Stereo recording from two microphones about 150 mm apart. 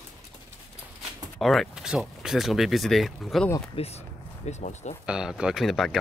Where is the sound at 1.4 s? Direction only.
Centre (ahead or behind).